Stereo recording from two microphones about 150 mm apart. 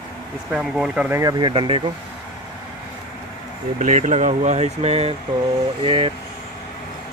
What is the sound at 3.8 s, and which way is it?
Speech, 55° right (ahead or behind).